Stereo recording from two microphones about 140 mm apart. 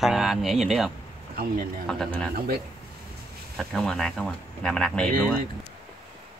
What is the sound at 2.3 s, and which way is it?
Speech, 90° right.